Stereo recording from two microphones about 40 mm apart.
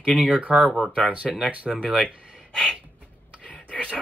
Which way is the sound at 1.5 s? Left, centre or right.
Right.